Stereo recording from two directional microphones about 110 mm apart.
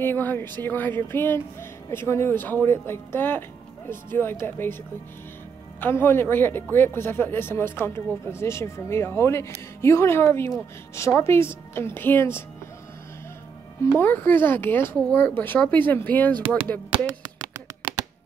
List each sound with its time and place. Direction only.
0.0 s speech: 20° left (ahead or behind)
5.8 s speech: 20° left (ahead or behind)
13.9 s speech: 20° left (ahead or behind)